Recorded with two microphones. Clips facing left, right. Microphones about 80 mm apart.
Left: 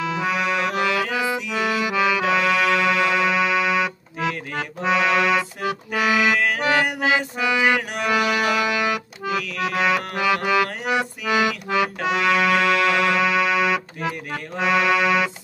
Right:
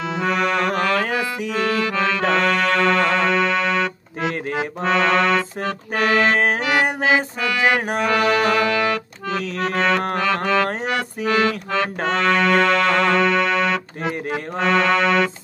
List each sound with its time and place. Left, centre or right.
0.0 s accordion: centre
0.7 s music: right
1.6 s music: centre
4.8 s accordion: centre
5.9 s music: right
8.5 s accordion: centre
10.2 s music: centre